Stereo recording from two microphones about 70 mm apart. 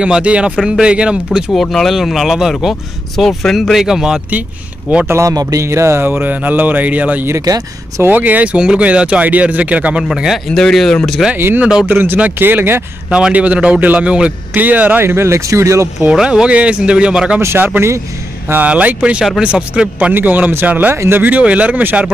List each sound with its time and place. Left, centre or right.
0.0 s speech: centre
1.5 s speech: centre
4.3 s a man's voice: right
5.0 s speech: right
5.3 s music: right
5.6 s a man's voice: right; by 10.0 s centre
10.0 s speech: centre
10.5 s speech: centre
11.3 s a man's voice: right
13.1 s a man's voice: centre; by 15.9 s right
16.0 s speech: centre
17.4 s speech: right
18.7 s a man's voice: centre